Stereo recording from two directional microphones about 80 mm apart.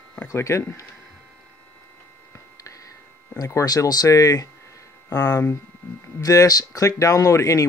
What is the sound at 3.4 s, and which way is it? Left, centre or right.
Speech, left.